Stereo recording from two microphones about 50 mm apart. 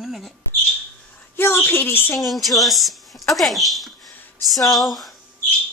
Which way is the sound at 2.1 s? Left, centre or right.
Centre.